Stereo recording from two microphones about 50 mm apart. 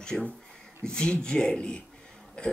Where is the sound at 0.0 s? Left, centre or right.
Centre.